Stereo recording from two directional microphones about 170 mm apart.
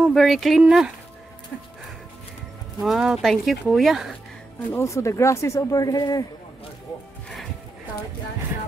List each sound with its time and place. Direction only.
0.0 s speech: centre (ahead or behind)
2.8 s speech: centre (ahead or behind)
4.7 s speech: 15° left (ahead or behind)